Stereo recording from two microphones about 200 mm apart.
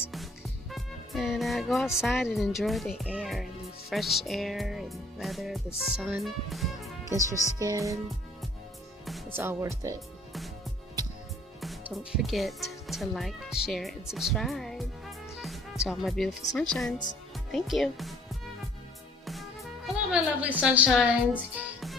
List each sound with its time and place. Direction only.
0.1 s music: centre (ahead or behind)
2.3 s speech: centre (ahead or behind)
7.5 s speech: 15° right (ahead or behind)
9.3 s speech: 15° right (ahead or behind)
11.6 s speech: centre (ahead or behind)
14.1 s music: centre (ahead or behind)
15.8 s speech: centre (ahead or behind)
20.1 s a woman's voice: 5° right (ahead or behind)